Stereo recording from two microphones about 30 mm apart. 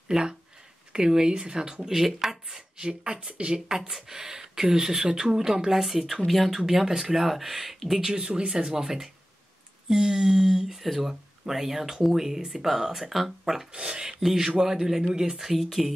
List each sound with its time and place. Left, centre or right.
0.1 s speech: right
1.8 s speech: centre; by 3.3 s right
3.6 s speech: centre
8.5 s speech: right; by 13.7 s centre
13.7 s speech: right
14.2 s speech: centre
15.5 s speech: centre